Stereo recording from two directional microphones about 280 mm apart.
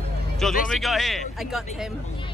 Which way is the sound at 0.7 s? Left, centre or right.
Centre.